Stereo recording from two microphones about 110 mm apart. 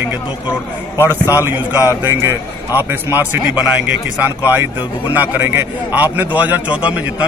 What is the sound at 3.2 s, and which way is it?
Speech, 15° right (ahead or behind).